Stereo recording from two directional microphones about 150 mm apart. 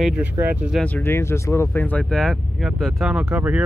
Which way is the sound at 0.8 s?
15° left (ahead or behind).